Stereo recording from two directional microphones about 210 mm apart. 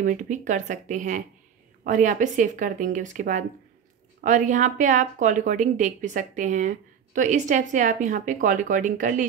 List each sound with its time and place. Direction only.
0.0 s speech: 35° right (ahead or behind)